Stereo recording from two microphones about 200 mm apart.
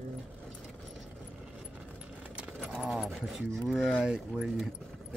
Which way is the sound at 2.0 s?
5° right (ahead or behind).